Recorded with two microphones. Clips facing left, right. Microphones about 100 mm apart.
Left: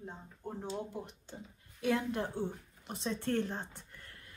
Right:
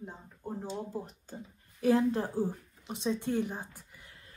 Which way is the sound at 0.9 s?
40° right (ahead or behind).